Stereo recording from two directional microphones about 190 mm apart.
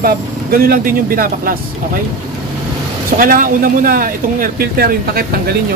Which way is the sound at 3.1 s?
50° right (ahead or behind).